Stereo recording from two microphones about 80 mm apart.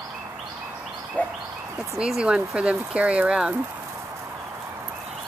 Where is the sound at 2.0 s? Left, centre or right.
Centre.